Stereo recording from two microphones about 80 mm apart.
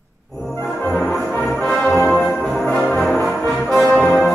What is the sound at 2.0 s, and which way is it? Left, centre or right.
Music, centre.